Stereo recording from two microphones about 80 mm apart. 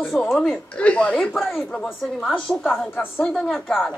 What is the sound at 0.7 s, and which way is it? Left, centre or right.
Speech, centre.